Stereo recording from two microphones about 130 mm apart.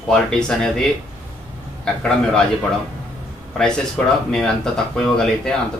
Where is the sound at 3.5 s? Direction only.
5° left (ahead or behind).